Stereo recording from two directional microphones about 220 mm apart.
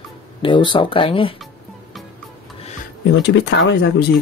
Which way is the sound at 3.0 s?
50° left (ahead or behind).